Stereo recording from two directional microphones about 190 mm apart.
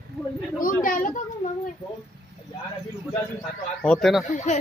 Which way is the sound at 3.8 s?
Centre (ahead or behind).